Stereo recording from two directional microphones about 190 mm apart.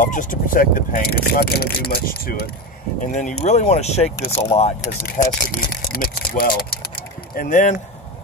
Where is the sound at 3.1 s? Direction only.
40° left (ahead or behind).